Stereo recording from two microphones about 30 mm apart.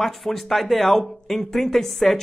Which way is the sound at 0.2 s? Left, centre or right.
Centre.